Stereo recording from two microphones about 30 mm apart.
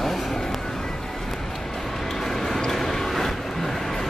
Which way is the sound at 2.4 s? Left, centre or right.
Centre.